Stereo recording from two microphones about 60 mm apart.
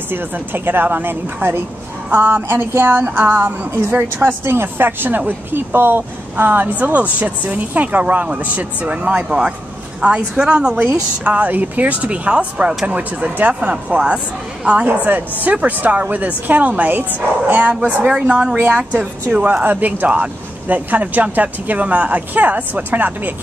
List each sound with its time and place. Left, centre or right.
0.1 s a woman's voice: right; by 14.9 s centre
15.0 s speech: right
17.8 s a woman's voice: centre
18.6 s speech: right